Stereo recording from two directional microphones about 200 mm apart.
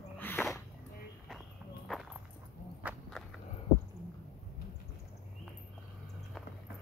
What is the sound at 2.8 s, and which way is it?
Walk, 5° right (ahead or behind).